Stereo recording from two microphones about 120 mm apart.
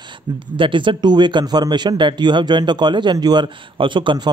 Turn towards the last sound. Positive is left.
turn(degrees=-40)  # may be behind; listen again after turning